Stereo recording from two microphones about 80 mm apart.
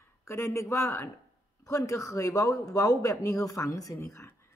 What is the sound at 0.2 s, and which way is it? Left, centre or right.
Speech, left.